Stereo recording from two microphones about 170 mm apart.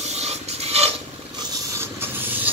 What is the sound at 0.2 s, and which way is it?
Mechanisms, 40° right (ahead or behind).